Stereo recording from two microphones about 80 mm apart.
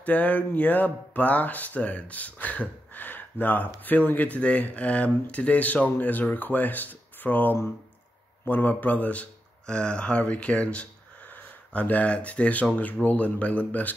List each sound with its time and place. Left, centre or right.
0.0 s speech: left